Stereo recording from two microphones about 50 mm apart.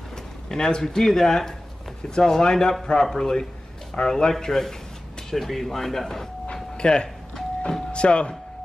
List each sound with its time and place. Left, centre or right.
0.5 s speech: centre
6.4 s doorbell: centre
7.9 s speech: left